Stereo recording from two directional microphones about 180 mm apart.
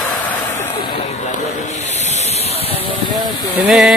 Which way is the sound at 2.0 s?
40° left (ahead or behind).